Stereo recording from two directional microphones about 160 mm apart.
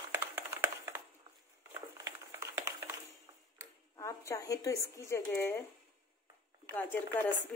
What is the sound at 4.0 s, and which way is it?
Speech, 20° left (ahead or behind).